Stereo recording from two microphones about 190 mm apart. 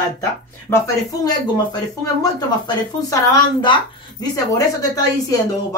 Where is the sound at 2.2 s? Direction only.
20° left (ahead or behind).